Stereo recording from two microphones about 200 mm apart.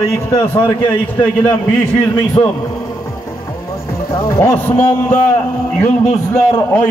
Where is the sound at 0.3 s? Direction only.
20° left (ahead or behind).